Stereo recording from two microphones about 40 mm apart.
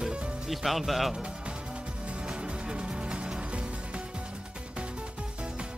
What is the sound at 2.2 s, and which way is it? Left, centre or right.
Music, right.